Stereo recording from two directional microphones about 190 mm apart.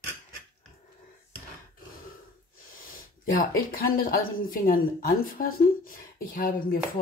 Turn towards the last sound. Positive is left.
turn(degrees=50)  # may be behind; listen again after turning